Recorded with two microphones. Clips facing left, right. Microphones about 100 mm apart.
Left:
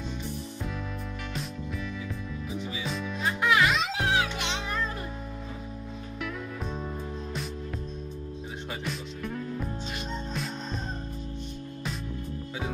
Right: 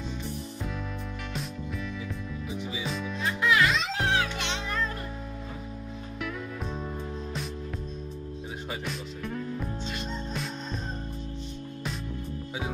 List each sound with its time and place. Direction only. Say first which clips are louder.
2.5 s music: even; centre (ahead or behind)
3.3 s music: left 1 dB; 20° left (ahead or behind)
4.0 s music: even; 5° left (ahead or behind)